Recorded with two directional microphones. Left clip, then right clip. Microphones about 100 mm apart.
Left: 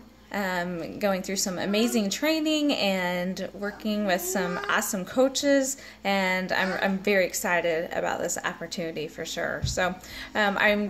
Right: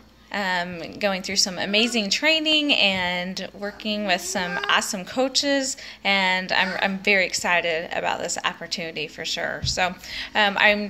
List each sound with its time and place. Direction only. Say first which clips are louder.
0.3 s speech: right 4 dB; 25° left (ahead or behind)